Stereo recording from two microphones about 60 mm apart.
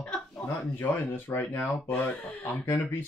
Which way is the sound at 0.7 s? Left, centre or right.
Left.